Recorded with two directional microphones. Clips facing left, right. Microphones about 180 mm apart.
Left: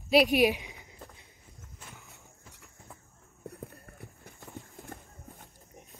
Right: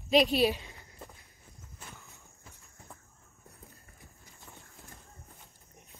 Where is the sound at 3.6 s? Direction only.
60° left (ahead or behind).